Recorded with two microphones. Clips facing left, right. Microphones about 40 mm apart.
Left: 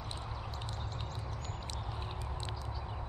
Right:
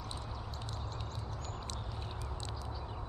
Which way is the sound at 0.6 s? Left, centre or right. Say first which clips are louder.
Left 1 dB; left.